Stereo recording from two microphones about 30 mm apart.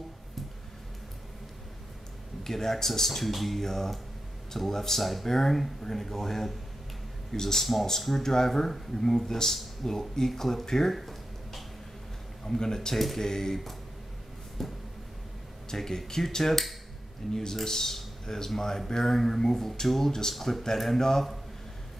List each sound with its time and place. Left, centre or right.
2.4 s speech: centre
11.0 s a sound: centre
12.4 s speech: centre
12.9 s speech: centre
13.2 s speech: centre
14.6 s a man's voice: centre
20.3 s speech: centre